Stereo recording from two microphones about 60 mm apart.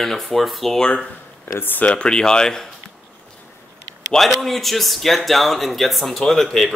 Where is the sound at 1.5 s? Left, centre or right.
Left.